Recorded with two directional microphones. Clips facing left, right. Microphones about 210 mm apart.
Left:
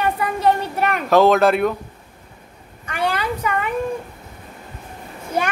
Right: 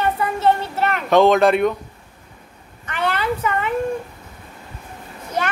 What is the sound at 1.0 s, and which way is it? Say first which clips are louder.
Speech: even; centre (ahead or behind).